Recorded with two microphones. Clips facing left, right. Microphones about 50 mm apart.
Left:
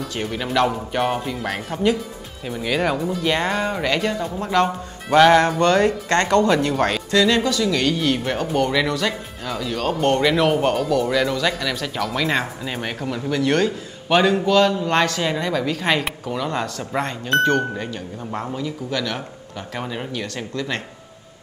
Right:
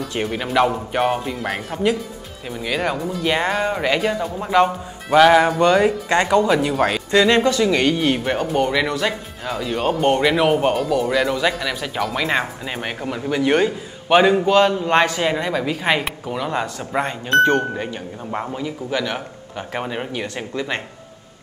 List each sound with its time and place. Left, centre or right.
0.1 s speech: centre
7.1 s speech: right
8.2 s speech: centre